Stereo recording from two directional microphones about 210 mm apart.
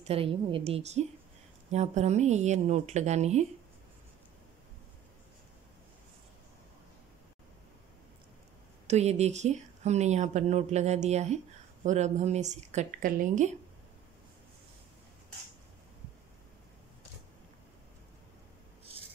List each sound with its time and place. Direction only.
0.0 s a woman's voice: 25° right (ahead or behind)
8.8 s speech: 30° right (ahead or behind)